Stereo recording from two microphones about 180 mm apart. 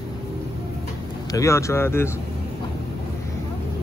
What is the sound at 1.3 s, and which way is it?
Speech, 15° left (ahead or behind).